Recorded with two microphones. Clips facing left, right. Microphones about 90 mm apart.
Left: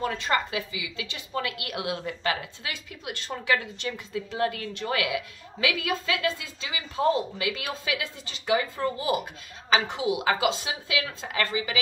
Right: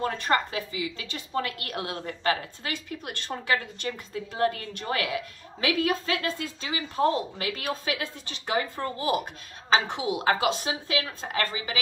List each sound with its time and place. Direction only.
0.0 s a woman's voice: 40° right (ahead or behind)